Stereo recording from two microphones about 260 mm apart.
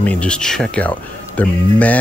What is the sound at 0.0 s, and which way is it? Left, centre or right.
Speech, centre.